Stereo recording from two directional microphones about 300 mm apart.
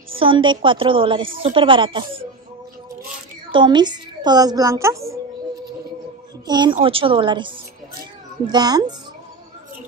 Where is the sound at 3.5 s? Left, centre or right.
Centre.